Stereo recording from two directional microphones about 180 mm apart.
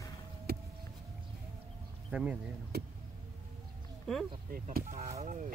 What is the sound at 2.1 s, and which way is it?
Speech, 5° right (ahead or behind).